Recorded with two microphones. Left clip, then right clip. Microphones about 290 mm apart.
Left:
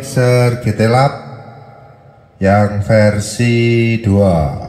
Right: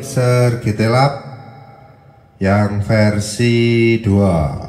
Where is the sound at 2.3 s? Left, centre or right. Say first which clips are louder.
Left 4 dB; left.